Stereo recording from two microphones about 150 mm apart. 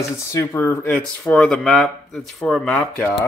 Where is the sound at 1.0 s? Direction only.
5° left (ahead or behind).